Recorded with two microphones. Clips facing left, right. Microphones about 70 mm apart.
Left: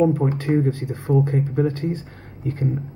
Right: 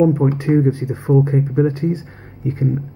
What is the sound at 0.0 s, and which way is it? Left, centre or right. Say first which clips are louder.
Speech: right 4 dB; centre.